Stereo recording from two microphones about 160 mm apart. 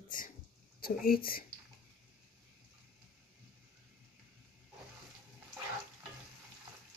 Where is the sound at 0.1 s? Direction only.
55° left (ahead or behind).